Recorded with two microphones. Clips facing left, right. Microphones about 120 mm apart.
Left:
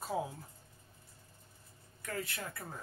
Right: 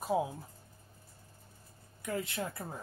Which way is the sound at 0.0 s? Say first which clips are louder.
Right 5 dB; 20° right (ahead or behind).